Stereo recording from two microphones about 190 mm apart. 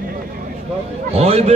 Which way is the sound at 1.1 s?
35° right (ahead or behind).